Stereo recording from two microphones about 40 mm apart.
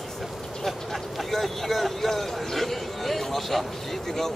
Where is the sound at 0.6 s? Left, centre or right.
Centre.